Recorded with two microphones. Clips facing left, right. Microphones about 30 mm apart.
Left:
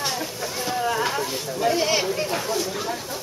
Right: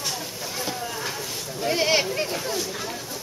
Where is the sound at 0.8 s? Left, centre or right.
Left.